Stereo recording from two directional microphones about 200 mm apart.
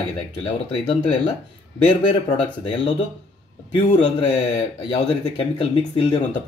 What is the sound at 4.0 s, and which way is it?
Speech, 25° left (ahead or behind).